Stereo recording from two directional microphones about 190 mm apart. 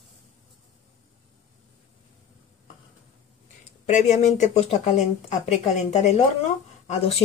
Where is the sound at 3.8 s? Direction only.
35° left (ahead or behind).